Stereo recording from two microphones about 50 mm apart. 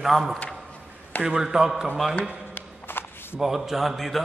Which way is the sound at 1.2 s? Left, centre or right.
Centre.